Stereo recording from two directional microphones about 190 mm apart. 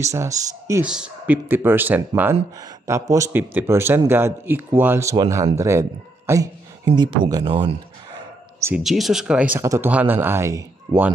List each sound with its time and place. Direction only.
0.0 s a man's voice: 15° right (ahead or behind)
0.8 s a man's voice: 5° right (ahead or behind); by 7.7 s 25° right (ahead or behind)
8.5 s speech: 15° right (ahead or behind)
8.8 s a man's voice: centre (ahead or behind); by 11.1 s 15° right (ahead or behind)